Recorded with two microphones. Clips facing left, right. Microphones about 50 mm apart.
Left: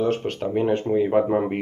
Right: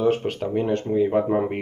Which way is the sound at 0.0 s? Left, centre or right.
Centre.